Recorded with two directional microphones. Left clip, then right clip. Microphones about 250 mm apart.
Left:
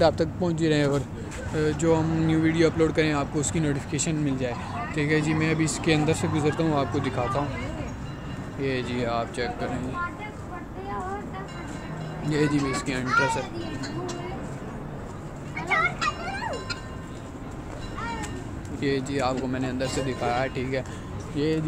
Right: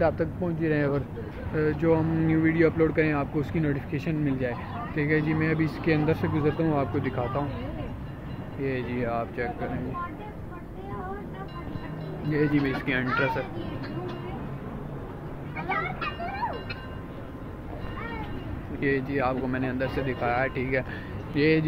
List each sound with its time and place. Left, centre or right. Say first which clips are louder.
0.2 s speech: left 3 dB; left
1.6 s speech: left 1 dB; centre
8.9 s speech: left 2 dB; centre
12.3 s speech: left 1 dB; centre
18.8 s speech: even; centre
21.4 s speech: right 4 dB; centre